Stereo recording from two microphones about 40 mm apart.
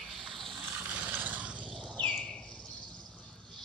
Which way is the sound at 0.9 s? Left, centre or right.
Right.